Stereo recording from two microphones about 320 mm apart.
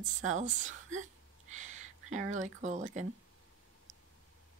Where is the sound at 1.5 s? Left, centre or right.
Right.